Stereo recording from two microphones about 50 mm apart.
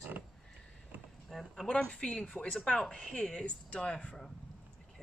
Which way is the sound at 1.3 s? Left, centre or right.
Centre.